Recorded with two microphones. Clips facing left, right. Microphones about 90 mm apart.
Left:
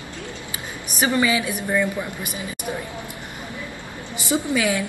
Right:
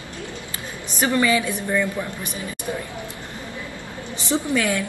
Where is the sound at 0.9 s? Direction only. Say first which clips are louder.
Right 1 dB; 15° left (ahead or behind).